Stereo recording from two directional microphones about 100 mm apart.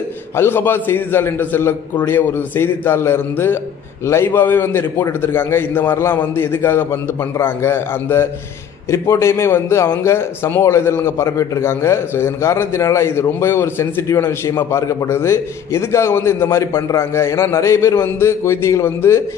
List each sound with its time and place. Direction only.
0.4 s speech: 25° left (ahead or behind)